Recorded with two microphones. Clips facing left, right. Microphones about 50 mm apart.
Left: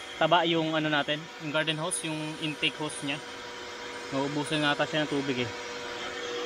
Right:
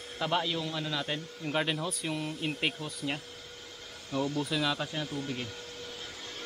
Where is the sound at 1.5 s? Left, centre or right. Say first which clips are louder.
Left 2 dB; centre.